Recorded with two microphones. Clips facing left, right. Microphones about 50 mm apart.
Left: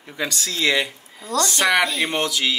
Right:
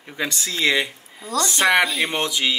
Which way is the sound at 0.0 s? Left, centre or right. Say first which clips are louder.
Even; centre.